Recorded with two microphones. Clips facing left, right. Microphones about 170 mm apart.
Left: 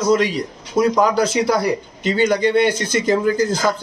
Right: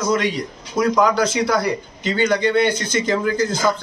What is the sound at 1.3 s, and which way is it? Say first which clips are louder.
Speech: left 2 dB; 30° left (ahead or behind).